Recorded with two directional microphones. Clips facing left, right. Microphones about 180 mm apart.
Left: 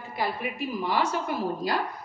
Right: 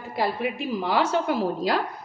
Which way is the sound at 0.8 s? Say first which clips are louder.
Right 4 dB; 90° right.